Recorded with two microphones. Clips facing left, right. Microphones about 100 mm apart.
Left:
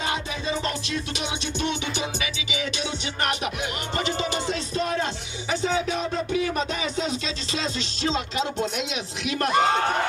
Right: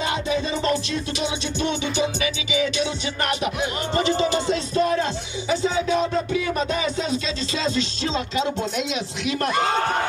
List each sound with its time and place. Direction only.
3.9 s music: 30° right (ahead or behind)